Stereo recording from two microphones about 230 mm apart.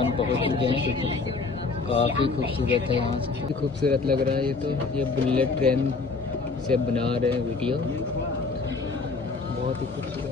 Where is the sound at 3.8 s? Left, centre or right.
Right.